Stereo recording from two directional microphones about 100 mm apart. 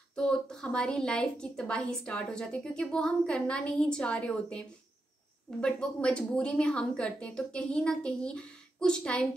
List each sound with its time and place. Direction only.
0.1 s a woman's voice: 5° left (ahead or behind)